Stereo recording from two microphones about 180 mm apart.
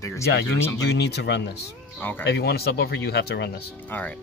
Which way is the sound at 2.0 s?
10° left (ahead or behind).